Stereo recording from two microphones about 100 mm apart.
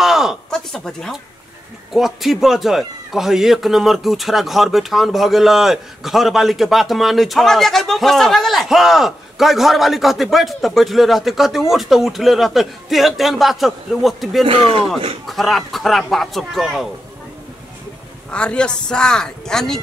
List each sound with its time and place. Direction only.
0.0 s a sound: 5° right (ahead or behind)
1.9 s a man's voice: centre (ahead or behind)
14.4 s speech: 70° right (ahead or behind)
15.2 s a man's voice: centre (ahead or behind)
18.3 s speech: 10° left (ahead or behind)